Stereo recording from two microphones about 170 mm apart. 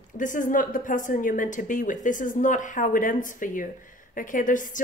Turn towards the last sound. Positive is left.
turn(degrees=50)  # may be behind; listen again after turning